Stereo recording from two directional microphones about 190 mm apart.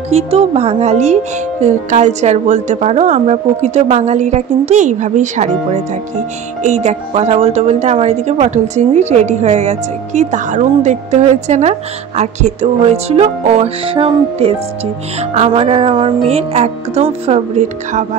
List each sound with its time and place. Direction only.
0.1 s a woman's voice: 35° right (ahead or behind)
6.6 s a woman's voice: 35° right (ahead or behind)